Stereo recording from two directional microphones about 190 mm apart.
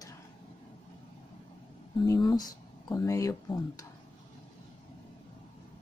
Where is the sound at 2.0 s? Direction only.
20° left (ahead or behind).